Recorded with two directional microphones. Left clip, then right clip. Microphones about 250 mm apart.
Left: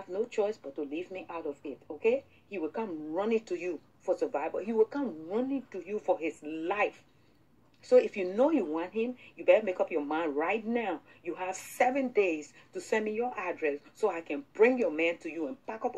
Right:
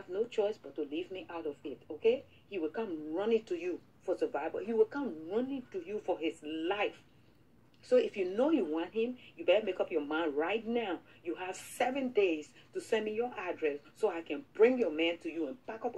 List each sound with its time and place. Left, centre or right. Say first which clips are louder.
0.1 s speech: left 2 dB; left